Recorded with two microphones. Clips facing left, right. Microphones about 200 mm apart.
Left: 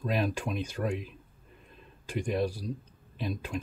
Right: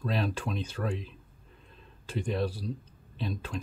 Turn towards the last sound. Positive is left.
turn(degrees=10)  # may be behind; listen again after turning